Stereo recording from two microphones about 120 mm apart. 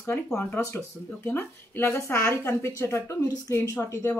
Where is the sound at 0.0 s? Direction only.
20° left (ahead or behind).